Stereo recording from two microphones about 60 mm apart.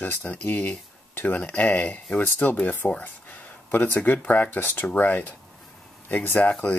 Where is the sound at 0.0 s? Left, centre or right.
Left.